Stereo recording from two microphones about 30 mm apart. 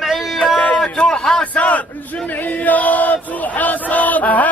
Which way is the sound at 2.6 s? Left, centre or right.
Left.